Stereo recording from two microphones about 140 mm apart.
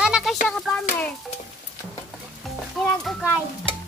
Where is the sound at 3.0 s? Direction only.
5° right (ahead or behind).